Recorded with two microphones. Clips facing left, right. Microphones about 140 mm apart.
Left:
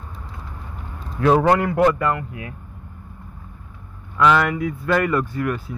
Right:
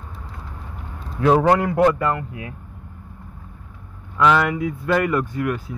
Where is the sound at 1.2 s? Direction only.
15° right (ahead or behind); by 2.5 s 30° right (ahead or behind).